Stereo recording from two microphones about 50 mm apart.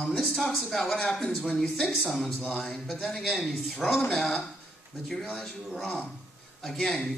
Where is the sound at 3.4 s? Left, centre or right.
Centre.